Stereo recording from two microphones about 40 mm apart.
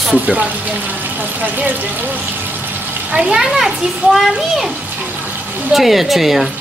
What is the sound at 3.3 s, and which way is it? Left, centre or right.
Speech, centre.